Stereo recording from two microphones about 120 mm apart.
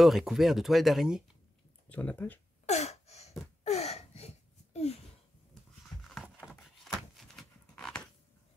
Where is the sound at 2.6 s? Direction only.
65° left (ahead or behind).